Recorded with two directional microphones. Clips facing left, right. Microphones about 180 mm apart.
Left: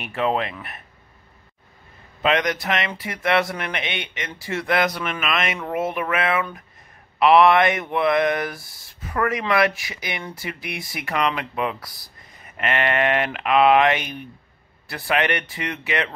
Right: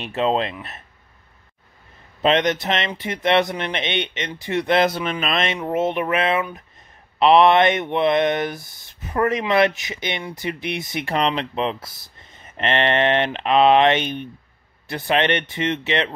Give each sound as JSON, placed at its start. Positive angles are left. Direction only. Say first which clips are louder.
{"t": 0.0, "sound": "speech", "louder": "right 2 dB", "side_deg": -25}
{"t": 2.2, "sound": "speech", "louder": "right 3 dB", "side_deg": -25}